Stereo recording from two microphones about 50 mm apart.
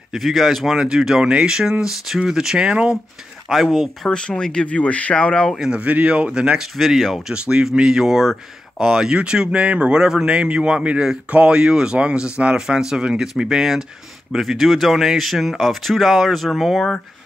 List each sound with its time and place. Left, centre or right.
0.1 s speech: centre
4.1 s speech: centre
5.7 s speech: right
6.6 s speech: centre
7.3 s speech: centre